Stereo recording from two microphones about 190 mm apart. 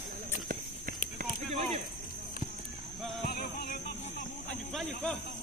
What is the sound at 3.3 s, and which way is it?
Music, 55° left (ahead or behind).